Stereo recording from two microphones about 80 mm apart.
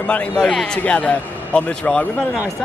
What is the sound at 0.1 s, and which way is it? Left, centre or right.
A man's voice, centre.